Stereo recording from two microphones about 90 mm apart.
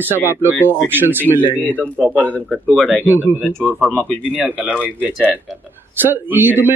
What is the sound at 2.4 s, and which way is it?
Speech, centre (ahead or behind).